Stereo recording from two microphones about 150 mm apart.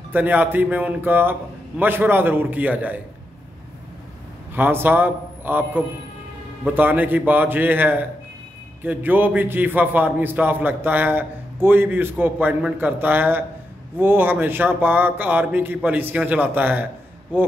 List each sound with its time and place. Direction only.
0.1 s a man's voice: 10° right (ahead or behind)
4.6 s a man's voice: 15° right (ahead or behind)